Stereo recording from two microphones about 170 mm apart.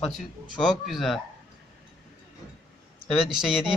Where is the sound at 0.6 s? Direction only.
Centre (ahead or behind).